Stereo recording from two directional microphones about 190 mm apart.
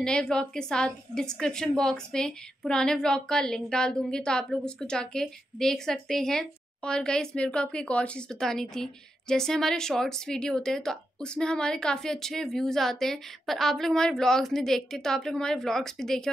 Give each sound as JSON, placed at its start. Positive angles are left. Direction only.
{"t": 0.0, "sound": "a woman's voice", "side_deg": 5}